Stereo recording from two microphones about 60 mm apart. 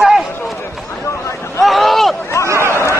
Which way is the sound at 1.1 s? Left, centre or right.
Left.